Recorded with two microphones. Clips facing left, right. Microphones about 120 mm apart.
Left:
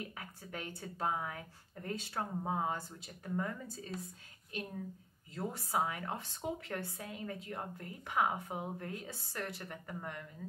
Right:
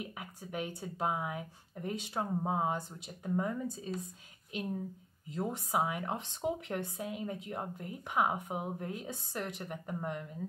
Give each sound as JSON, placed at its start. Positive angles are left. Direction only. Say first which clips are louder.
{"t": 0.0, "sound": "speech", "louder": "right 3 dB", "side_deg": -15}
{"t": 5.3, "sound": "speech", "louder": "right 3 dB", "side_deg": -20}